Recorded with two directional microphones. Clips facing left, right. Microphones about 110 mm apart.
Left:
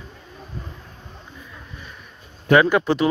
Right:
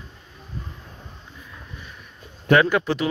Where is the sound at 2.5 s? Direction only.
20° left (ahead or behind).